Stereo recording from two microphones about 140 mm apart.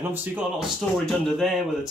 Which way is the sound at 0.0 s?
10° right (ahead or behind).